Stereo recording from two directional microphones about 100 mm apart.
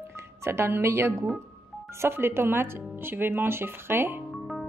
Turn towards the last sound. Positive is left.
turn(degrees=-25)  # may be behind; listen again after turning